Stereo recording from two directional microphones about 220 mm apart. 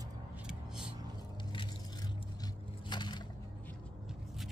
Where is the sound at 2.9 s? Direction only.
20° left (ahead or behind).